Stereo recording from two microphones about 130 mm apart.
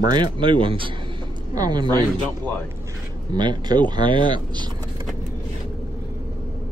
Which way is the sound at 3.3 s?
35° right (ahead or behind).